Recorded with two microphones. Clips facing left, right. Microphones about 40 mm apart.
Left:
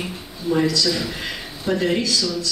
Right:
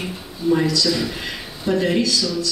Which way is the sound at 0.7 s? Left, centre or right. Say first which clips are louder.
Right 1 dB; centre.